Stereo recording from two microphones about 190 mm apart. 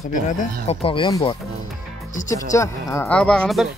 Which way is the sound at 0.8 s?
25° left (ahead or behind).